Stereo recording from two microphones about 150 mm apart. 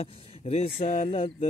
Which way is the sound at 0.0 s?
40° left (ahead or behind).